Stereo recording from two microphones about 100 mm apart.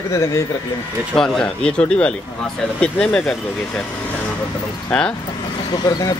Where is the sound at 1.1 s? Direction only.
5° left (ahead or behind).